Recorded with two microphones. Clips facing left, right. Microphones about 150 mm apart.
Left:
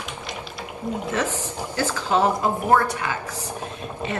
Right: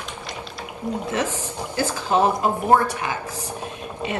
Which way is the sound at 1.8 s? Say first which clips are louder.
Right 1 dB; 15° right (ahead or behind).